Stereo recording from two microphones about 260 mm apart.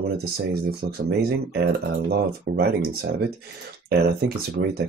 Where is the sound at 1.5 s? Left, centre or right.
Right.